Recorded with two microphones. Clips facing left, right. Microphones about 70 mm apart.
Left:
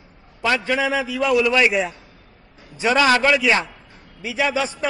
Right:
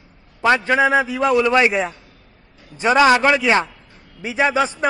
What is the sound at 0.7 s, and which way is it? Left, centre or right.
A man's voice, right.